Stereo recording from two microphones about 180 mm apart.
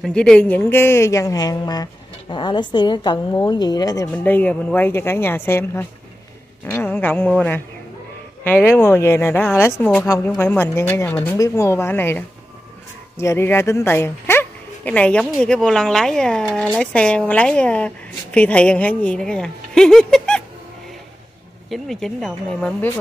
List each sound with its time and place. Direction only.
0.0 s speech: 5° left (ahead or behind)
4.1 s a woman's voice: 10° left (ahead or behind)
21.6 s a woman's voice: centre (ahead or behind)